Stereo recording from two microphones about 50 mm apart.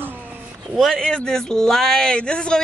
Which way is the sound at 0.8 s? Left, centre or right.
Centre.